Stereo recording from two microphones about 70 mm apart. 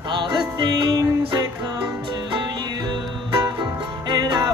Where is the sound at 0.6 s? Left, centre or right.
Right.